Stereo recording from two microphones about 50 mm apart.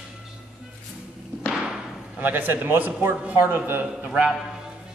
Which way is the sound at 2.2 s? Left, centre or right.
Right.